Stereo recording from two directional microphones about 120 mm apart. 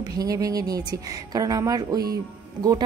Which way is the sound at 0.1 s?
30° right (ahead or behind).